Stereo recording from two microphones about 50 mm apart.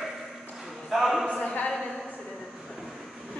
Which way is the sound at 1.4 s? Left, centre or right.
Left.